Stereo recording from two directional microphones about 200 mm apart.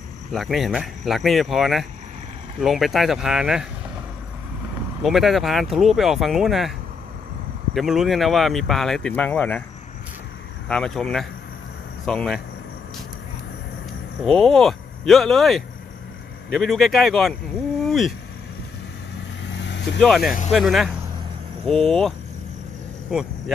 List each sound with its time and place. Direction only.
0.3 s speech: centre (ahead or behind)
5.0 s speech: centre (ahead or behind)
7.7 s speech: centre (ahead or behind)
10.7 s speech: 5° left (ahead or behind)
14.2 s speech: centre (ahead or behind)
17.8 s vehicle: centre (ahead or behind)
19.5 s vehicle: 60° left (ahead or behind)
20.0 s speech: centre (ahead or behind)